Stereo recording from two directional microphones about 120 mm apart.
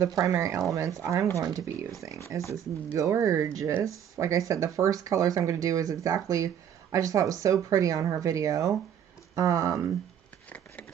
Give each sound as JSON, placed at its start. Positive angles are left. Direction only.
{"t": 0.0, "sound": "speech", "side_deg": -25}